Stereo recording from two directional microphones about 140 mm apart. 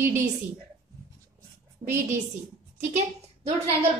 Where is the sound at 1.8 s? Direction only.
45° right (ahead or behind).